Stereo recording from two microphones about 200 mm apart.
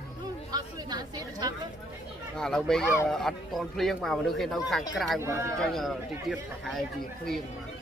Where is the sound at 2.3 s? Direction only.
5° left (ahead or behind).